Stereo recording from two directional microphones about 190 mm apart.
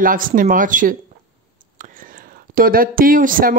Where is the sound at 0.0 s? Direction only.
45° right (ahead or behind).